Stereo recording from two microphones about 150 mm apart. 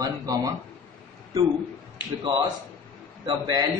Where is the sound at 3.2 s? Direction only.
30° right (ahead or behind).